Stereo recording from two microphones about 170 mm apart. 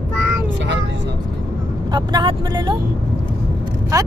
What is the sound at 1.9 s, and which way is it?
Speech, 25° right (ahead or behind).